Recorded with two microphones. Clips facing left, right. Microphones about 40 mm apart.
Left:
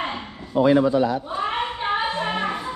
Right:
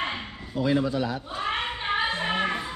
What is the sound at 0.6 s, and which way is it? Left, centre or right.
Speech, left.